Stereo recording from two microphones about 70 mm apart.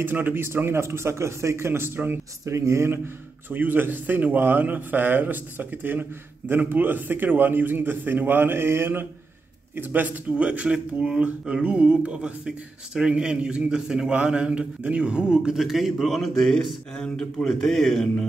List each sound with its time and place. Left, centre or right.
0.0 s a man's voice: right
3.4 s a man's voice: right; by 18.2 s centre